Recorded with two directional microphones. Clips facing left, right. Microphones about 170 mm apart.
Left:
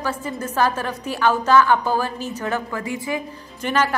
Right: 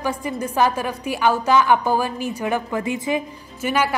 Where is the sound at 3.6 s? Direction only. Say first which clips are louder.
Even; 10° right (ahead or behind).